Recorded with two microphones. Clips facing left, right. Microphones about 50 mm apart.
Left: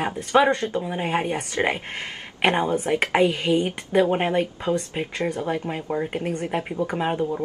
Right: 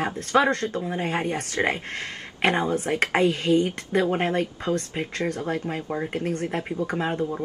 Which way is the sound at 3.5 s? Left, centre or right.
Left.